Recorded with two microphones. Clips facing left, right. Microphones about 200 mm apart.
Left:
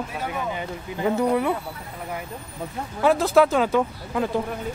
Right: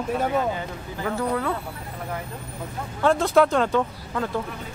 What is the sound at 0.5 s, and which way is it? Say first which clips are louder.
Speech: left 1 dB; 20° left (ahead or behind).